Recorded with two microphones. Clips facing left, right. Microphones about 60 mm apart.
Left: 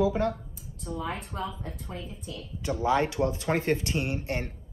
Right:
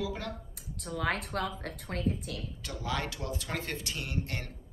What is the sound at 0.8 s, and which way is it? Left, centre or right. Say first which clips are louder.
A woman's voice: right 1 dB; right.